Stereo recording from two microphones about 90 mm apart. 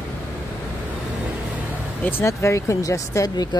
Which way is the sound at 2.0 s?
25° left (ahead or behind).